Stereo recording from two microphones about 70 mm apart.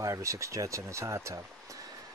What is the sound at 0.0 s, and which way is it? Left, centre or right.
Speech, right.